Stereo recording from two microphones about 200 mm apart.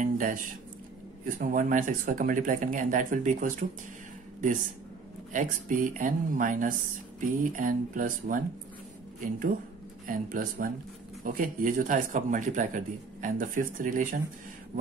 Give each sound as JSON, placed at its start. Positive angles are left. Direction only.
{"t": 0.0, "sound": "a sound", "side_deg": -40}
{"t": 1.4, "sound": "a man's voice", "side_deg": -40}
{"t": 5.3, "sound": "a man's voice", "side_deg": -40}
{"t": 10.0, "sound": "a man's voice", "side_deg": -45}